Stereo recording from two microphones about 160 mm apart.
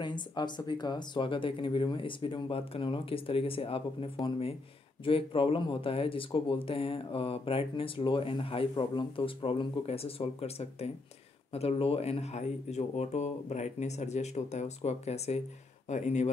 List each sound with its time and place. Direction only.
0.0 s speech: 25° left (ahead or behind); by 16.3 s 45° left (ahead or behind)